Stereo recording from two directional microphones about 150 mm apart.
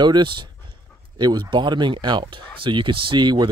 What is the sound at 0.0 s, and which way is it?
Speech, 30° right (ahead or behind).